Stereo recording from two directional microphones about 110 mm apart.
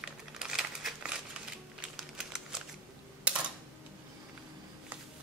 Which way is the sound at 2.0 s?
5° right (ahead or behind).